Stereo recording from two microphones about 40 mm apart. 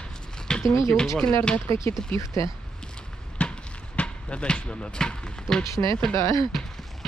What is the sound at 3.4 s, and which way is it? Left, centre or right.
Basketball bounce, left.